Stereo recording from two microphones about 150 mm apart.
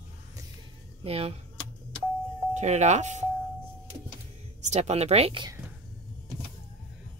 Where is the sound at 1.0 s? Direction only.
40° right (ahead or behind).